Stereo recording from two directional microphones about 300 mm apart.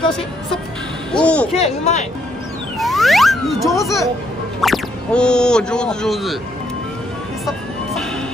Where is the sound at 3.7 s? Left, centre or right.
Centre.